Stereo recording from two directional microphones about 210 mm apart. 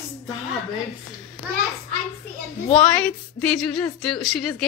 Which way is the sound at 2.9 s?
5° left (ahead or behind).